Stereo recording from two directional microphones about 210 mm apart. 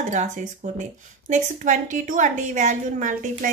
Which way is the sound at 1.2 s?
35° right (ahead or behind).